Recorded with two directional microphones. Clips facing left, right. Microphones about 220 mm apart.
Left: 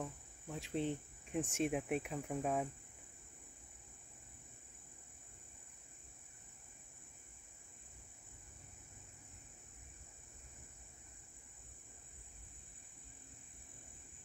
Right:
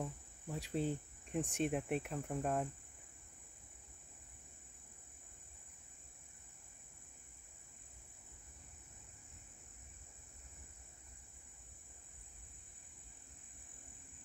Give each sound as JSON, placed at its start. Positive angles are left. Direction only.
{"t": 0.0, "sound": "cricket", "side_deg": 0}